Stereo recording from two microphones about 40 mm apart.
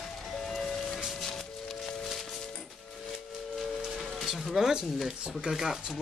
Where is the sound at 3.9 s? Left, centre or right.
Centre.